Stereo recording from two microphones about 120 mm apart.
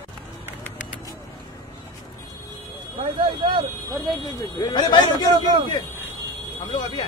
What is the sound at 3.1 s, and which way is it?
Speech, 45° right (ahead or behind).